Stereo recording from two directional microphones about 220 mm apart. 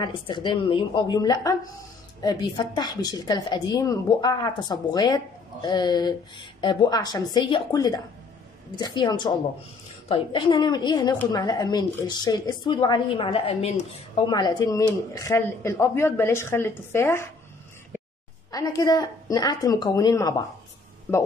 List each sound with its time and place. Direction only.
0.0 s a woman's voice: 20° left (ahead or behind)
18.5 s speech: 15° left (ahead or behind)